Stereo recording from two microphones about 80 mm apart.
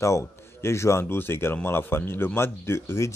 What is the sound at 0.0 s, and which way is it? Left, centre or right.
A man's voice, left.